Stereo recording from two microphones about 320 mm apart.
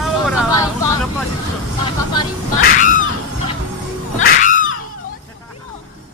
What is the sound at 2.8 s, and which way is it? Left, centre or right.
Crow, left.